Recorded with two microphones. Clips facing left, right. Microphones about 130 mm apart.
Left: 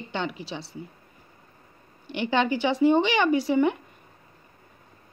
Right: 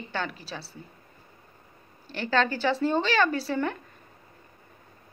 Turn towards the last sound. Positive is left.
turn(degrees=15)  # may be behind; listen again after turning